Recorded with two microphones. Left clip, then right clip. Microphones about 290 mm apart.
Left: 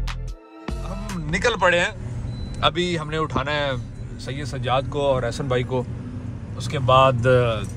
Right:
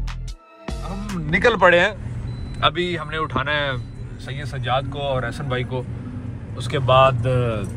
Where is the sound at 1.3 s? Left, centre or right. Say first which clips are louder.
Right 4 dB; centre.